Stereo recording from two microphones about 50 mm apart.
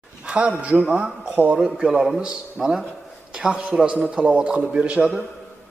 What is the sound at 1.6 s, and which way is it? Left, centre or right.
A man's voice, centre.